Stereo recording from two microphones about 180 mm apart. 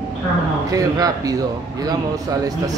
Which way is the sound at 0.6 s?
20° right (ahead or behind).